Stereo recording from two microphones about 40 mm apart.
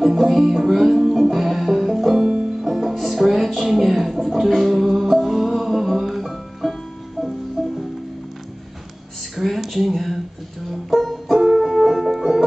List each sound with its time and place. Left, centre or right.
0.0 s music: centre
2.2 s music: centre
2.6 s music: centre
9.4 s a sound: centre
10.7 s music: centre
11.3 s music: centre
11.6 s music: centre